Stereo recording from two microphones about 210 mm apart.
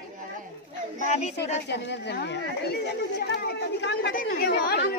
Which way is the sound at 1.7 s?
55° left (ahead or behind).